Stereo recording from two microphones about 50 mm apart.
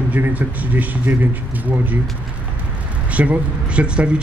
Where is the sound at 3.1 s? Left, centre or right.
Right.